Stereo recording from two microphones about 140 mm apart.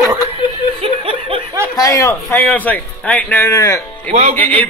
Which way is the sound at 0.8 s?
40° right (ahead or behind).